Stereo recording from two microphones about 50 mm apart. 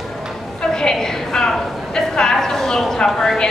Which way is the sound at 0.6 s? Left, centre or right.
Centre.